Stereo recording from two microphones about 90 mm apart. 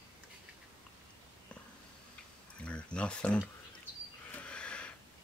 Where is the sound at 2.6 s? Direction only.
10° left (ahead or behind).